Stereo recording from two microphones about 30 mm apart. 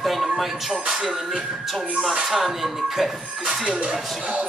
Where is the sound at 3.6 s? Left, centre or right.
Right.